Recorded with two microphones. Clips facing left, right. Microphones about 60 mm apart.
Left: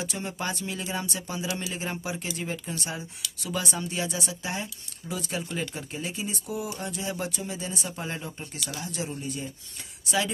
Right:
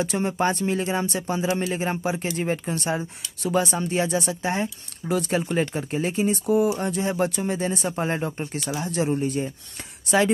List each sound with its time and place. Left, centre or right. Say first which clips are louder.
0.0 s speech: right 9 dB; right